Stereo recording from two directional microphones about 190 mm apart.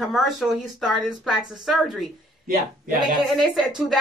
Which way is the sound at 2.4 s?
45° right (ahead or behind).